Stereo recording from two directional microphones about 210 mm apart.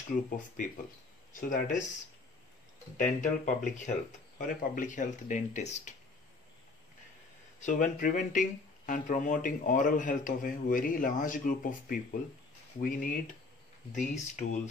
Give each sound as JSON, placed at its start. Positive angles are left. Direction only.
{"t": 0.6, "sound": "speech", "side_deg": 35}
{"t": 3.0, "sound": "speech", "side_deg": 40}
{"t": 7.6, "sound": "speech", "side_deg": 40}